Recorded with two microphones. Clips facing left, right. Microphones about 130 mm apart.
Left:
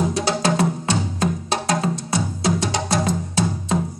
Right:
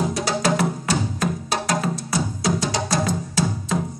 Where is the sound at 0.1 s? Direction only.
25° left (ahead or behind).